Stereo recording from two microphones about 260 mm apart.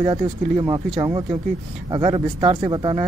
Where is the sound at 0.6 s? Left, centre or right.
Centre.